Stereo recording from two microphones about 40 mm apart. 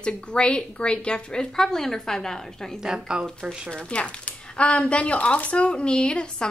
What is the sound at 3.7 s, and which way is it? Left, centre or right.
Speech, left.